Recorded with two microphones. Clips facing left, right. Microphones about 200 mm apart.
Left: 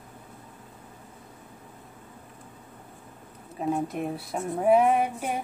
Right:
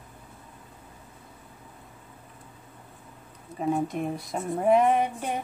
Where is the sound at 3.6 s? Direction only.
Centre (ahead or behind).